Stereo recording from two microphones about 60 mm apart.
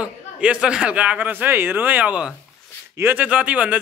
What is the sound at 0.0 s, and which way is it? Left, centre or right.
A man's voice, centre.